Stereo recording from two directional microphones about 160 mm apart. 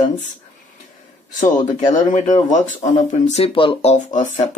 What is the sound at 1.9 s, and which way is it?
Speech, 45° left (ahead or behind).